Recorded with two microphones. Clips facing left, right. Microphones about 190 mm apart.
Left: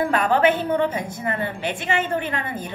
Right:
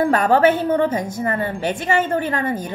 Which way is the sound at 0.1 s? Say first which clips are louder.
Right 4 dB; 40° right (ahead or behind).